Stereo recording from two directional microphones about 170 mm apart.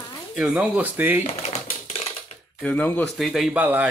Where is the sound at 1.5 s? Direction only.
35° left (ahead or behind).